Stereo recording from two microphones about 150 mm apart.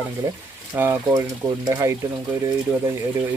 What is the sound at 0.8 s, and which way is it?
Speech, 15° right (ahead or behind).